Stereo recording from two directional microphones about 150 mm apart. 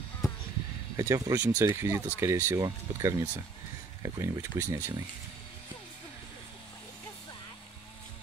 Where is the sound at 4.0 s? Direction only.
20° right (ahead or behind).